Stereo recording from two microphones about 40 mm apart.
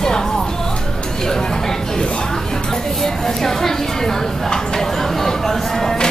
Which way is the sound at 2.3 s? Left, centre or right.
Centre.